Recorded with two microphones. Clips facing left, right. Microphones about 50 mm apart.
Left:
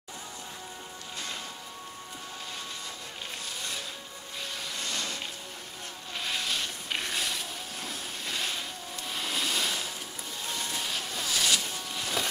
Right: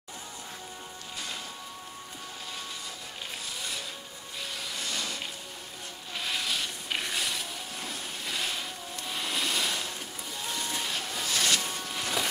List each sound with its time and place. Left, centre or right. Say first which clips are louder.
4.7 s a sound: even; centre
6.1 s vehicle: even; centre
10.5 s boat: right 1 dB; centre
11.6 s music: right 1 dB; centre